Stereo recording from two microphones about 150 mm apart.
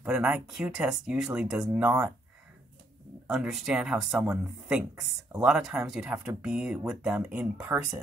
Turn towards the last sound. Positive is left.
turn(degrees=-10)  # may be behind; listen again after turning